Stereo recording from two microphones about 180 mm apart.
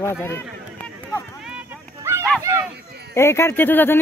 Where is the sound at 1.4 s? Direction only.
10° right (ahead or behind).